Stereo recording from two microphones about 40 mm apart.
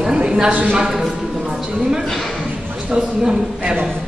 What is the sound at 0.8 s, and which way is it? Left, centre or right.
Speech, centre.